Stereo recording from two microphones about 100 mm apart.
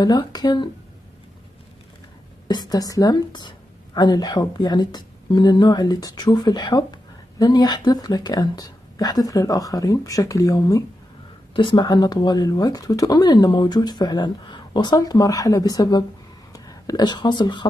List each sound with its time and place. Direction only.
0.0 s speech: 45° left (ahead or behind)
2.4 s a woman's voice: 45° left (ahead or behind)
11.5 s speech: 60° left (ahead or behind)
11.8 s a woman's voice: 40° left (ahead or behind)